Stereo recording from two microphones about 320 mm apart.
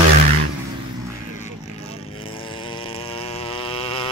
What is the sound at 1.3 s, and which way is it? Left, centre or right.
Vehicle, left.